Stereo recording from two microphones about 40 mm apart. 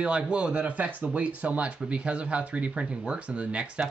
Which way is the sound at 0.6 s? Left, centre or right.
Right.